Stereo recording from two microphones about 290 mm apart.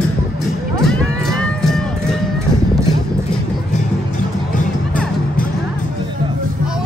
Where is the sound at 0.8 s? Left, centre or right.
Centre.